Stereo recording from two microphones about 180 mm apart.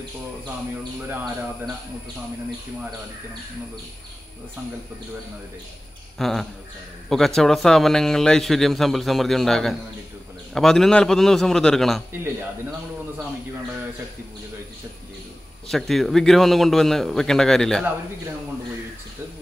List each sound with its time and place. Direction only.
6.1 s a man's voice: centre (ahead or behind)
15.7 s a man's voice: centre (ahead or behind)